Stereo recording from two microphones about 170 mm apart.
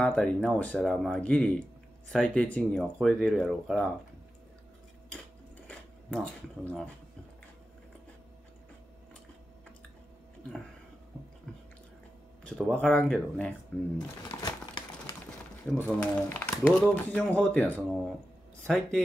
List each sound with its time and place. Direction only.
0.0 s speech: 5° left (ahead or behind)
5.7 s speech: 5° left (ahead or behind)
11.5 s biting: 5° left (ahead or behind)
12.4 s speech: 5° left (ahead or behind)
13.9 s a sound: 25° left (ahead or behind)
15.8 s speech: 10° left (ahead or behind)